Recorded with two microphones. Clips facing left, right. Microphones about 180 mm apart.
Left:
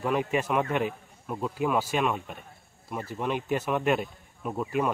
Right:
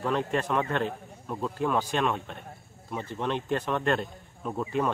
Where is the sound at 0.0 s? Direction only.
10° left (ahead or behind).